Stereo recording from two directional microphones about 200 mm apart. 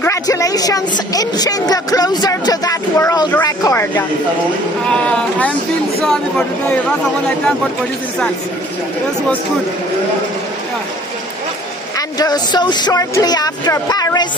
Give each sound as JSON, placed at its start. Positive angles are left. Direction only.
{"t": 0.0, "sound": "a sound", "side_deg": 15}
{"t": 4.8, "sound": "speech", "side_deg": 5}
{"t": 12.2, "sound": "speech", "side_deg": 20}